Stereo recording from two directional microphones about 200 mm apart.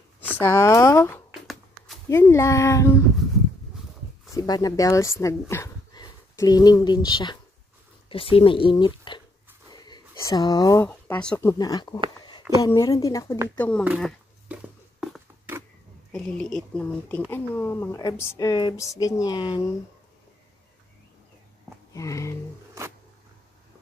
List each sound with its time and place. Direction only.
0.3 s speech: 10° left (ahead or behind)
1.3 s a sound: centre (ahead or behind)
2.0 s speech: 15° left (ahead or behind)
4.3 s speech: 15° left (ahead or behind)
13.8 s a sound: 5° right (ahead or behind)
16.1 s speech: 5° left (ahead or behind); by 19.6 s 20° left (ahead or behind)
21.9 s speech: 15° left (ahead or behind)